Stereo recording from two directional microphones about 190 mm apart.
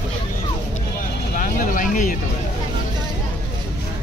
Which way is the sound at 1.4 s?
45° left (ahead or behind).